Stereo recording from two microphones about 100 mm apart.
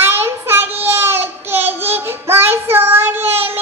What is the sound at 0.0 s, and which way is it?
Child singing, 25° right (ahead or behind).